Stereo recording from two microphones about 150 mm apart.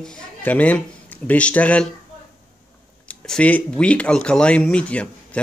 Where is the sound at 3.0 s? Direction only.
5° left (ahead or behind).